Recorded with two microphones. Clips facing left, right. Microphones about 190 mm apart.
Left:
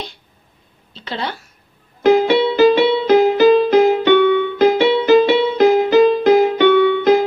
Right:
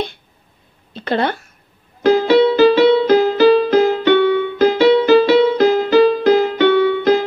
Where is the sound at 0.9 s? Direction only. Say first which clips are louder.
Right 7 dB; 55° right (ahead or behind).